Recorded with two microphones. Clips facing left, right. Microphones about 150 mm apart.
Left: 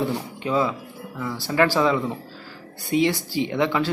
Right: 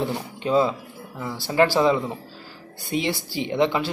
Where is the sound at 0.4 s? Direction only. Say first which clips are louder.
Right 4 dB; 25° right (ahead or behind).